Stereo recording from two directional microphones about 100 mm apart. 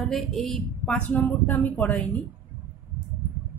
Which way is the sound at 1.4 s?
15° left (ahead or behind).